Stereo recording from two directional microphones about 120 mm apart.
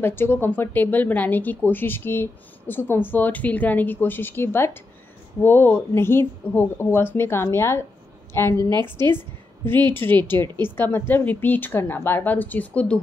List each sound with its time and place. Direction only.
0.0 s a woman's voice: 20° left (ahead or behind)